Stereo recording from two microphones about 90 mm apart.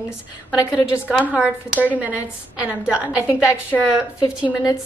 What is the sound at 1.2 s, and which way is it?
A woman's voice, 15° right (ahead or behind).